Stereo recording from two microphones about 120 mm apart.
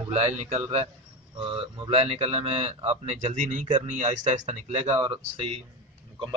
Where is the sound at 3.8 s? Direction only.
75° right (ahead or behind).